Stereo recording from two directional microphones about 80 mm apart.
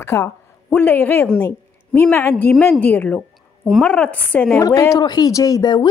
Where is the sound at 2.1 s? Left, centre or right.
Left.